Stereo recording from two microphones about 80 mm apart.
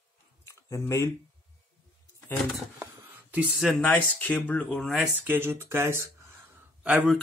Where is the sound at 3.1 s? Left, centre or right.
Centre.